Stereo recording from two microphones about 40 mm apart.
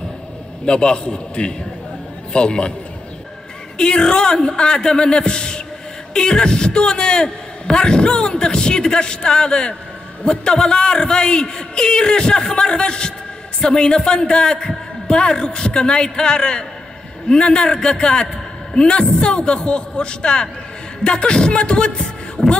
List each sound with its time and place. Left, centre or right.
0.7 s a man's voice: left
3.7 s a man's voice: centre